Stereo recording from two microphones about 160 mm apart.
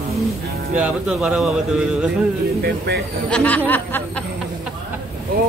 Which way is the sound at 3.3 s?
10° left (ahead or behind).